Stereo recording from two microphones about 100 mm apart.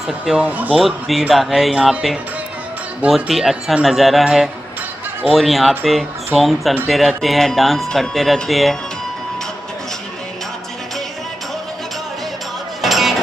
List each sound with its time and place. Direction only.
0.0 s speech: 5° right (ahead or behind)
0.5 s speech: 15° right (ahead or behind)
0.7 s speech: centre (ahead or behind)
3.2 s speech: 5° right (ahead or behind)
12.8 s a sound: centre (ahead or behind)